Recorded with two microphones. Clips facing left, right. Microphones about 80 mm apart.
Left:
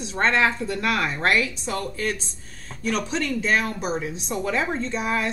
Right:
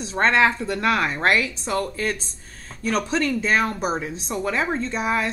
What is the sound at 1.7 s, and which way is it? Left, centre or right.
Speech, right.